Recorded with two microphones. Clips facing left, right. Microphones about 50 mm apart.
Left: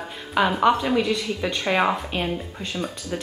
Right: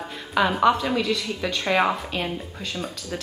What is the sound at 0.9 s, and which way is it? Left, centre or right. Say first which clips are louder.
Speech: left 2 dB; centre.